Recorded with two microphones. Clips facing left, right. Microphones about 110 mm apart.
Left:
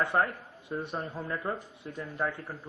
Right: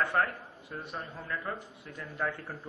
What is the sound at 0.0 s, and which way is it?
A man's voice, 20° left (ahead or behind).